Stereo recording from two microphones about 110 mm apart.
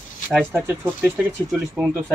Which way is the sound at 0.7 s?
10° right (ahead or behind).